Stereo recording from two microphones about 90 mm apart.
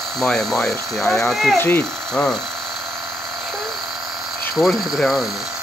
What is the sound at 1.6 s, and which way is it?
Speech, 25° left (ahead or behind).